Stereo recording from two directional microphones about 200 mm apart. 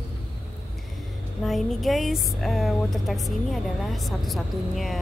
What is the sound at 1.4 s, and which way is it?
Speech, centre (ahead or behind).